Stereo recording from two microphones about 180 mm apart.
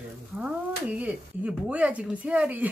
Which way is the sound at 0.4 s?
5° right (ahead or behind).